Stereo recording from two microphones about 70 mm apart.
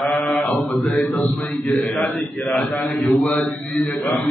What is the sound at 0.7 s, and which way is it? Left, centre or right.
A man's voice, centre.